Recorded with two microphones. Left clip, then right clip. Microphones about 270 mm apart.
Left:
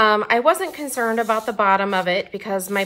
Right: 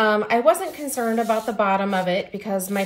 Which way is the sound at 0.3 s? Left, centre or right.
Centre.